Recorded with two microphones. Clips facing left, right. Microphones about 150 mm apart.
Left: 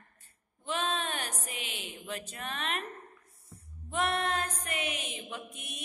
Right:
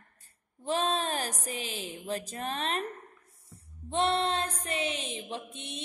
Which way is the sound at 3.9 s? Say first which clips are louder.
Right 3 dB; 30° right (ahead or behind).